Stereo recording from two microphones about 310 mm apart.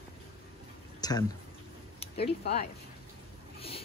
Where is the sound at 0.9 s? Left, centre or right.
Centre.